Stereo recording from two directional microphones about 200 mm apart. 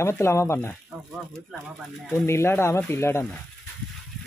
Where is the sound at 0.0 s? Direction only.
15° left (ahead or behind).